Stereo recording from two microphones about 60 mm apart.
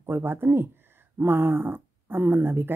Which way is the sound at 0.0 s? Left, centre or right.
Right.